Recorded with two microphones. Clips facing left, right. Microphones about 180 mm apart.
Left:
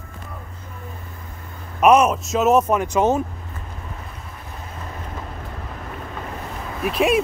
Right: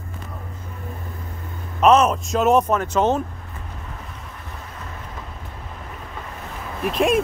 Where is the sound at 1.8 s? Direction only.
10° left (ahead or behind).